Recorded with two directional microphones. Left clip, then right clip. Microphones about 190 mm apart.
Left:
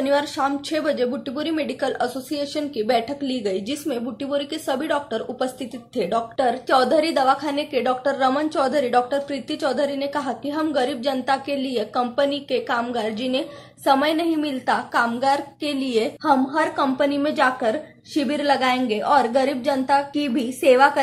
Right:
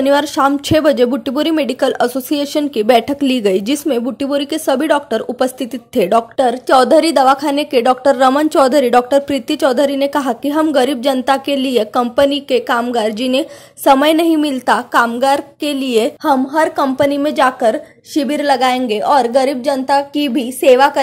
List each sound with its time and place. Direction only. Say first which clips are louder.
0.0 s a woman's voice: right 8 dB; 50° right (ahead or behind)